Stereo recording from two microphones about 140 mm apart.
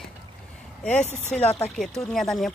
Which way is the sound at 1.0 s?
15° right (ahead or behind).